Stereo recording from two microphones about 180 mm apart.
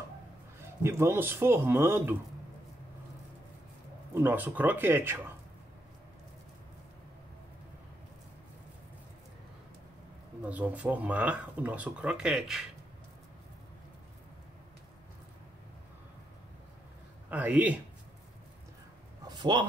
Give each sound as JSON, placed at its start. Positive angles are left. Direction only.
{"t": 0.6, "sound": "speech", "side_deg": -15}
{"t": 4.1, "sound": "speech", "side_deg": -10}
{"t": 10.4, "sound": "speech", "side_deg": -10}
{"t": 17.3, "sound": "speech", "side_deg": -10}
{"t": 19.2, "sound": "a sound", "side_deg": -25}